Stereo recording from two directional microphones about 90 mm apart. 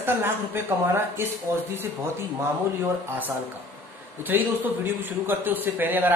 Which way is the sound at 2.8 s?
20° right (ahead or behind).